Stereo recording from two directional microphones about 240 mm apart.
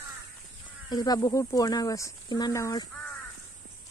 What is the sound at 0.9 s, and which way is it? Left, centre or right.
Speech, centre.